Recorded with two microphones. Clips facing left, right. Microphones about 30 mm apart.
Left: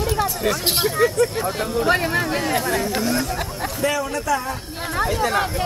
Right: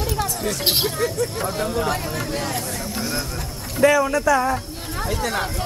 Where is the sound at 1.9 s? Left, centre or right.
Left.